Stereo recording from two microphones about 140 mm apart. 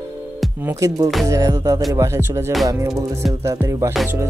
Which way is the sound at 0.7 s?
25° right (ahead or behind).